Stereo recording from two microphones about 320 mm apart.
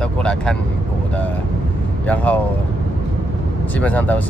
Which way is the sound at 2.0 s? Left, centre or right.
Centre.